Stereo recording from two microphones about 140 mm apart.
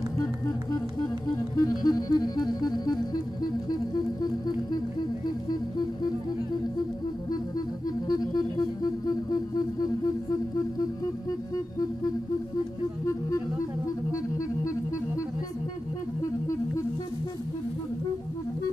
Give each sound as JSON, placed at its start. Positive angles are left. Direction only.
{"t": 0.2, "sound": "music", "side_deg": 25}
{"t": 8.1, "sound": "music", "side_deg": 30}
{"t": 16.2, "sound": "music", "side_deg": 25}